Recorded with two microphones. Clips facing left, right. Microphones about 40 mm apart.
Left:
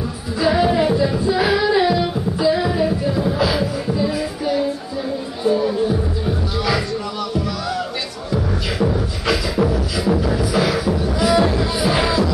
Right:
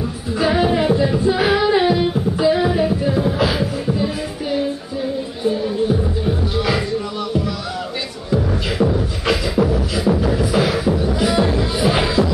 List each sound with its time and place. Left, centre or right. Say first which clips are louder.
0.4 s music: even; right
0.7 s music: even; centre
1.2 s singing: right 1 dB; right
3.3 s music: even; right
6.5 s music: right 1 dB; right
8.9 s beatboxing: right 1 dB; right
11.3 s music: left 3 dB; centre
11.8 s music: right 1 dB; right